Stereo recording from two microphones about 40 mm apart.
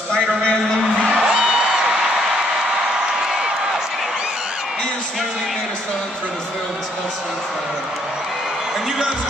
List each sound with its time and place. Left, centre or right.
1.1 s music: centre